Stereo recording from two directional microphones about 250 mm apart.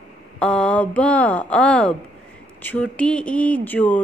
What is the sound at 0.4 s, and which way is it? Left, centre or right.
Speech, centre.